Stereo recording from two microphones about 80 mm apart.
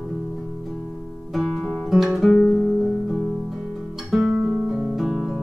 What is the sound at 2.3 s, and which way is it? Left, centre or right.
Music, centre.